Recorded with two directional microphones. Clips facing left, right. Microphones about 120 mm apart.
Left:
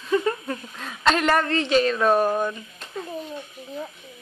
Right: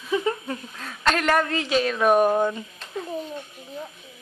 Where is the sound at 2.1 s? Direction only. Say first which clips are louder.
Right 2 dB; 20° right (ahead or behind).